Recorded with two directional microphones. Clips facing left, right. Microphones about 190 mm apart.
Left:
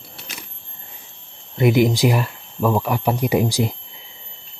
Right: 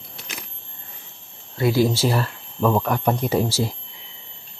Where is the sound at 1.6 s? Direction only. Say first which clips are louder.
Left 3 dB; 20° left (ahead or behind).